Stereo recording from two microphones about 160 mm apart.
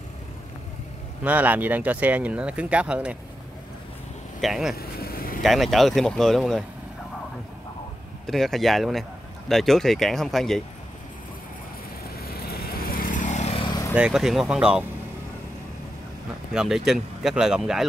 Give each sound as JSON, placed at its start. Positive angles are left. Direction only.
{"t": 1.2, "sound": "speech", "side_deg": -10}
{"t": 4.4, "sound": "speech", "side_deg": 0}
{"t": 4.7, "sound": "vehicle", "side_deg": 70}
{"t": 5.4, "sound": "speech", "side_deg": 0}
{"t": 8.3, "sound": "speech", "side_deg": 0}
{"t": 12.2, "sound": "vehicle", "side_deg": 75}
{"t": 13.7, "sound": "vehicle", "side_deg": 25}
{"t": 13.9, "sound": "speech", "side_deg": -5}
{"t": 16.5, "sound": "speech", "side_deg": 0}